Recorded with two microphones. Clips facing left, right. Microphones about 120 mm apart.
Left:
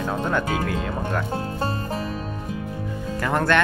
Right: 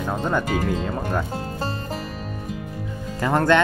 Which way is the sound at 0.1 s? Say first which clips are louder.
Right 2 dB; 15° right (ahead or behind).